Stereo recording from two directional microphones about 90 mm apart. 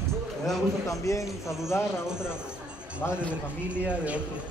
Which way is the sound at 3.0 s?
25° left (ahead or behind).